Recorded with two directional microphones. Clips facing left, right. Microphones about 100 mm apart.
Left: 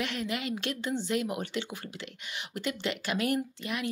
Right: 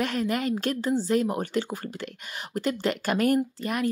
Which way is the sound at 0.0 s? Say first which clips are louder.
Right 7 dB; 40° right (ahead or behind).